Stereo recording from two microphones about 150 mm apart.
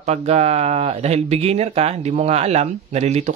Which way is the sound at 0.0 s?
45° right (ahead or behind).